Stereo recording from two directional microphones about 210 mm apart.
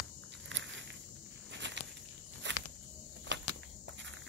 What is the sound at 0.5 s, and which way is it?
Walk, 60° right (ahead or behind).